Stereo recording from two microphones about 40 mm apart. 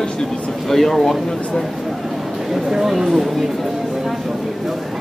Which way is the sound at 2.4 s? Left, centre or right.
Centre.